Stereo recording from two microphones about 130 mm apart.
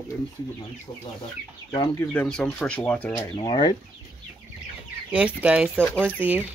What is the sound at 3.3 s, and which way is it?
Speech, 40° left (ahead or behind).